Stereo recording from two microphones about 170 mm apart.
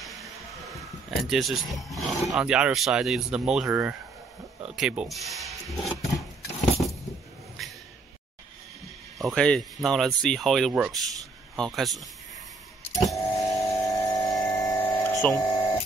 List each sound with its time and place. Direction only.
0.0 s music: centre (ahead or behind)
1.3 s speech: centre (ahead or behind)
4.6 s a sound: 5° right (ahead or behind)
6.4 s keys jangling: centre (ahead or behind)
9.2 s speech: 5° left (ahead or behind)
12.9 s vehicle: centre (ahead or behind)
13.4 s a sound: 20° left (ahead or behind)
14.4 s hum: 20° left (ahead or behind)